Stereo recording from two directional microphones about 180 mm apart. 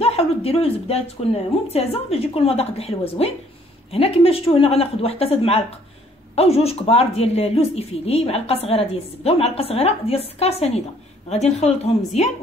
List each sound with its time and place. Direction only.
0.0 s speech: 35° left (ahead or behind)